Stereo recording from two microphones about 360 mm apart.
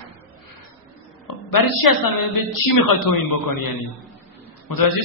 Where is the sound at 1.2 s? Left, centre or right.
Left.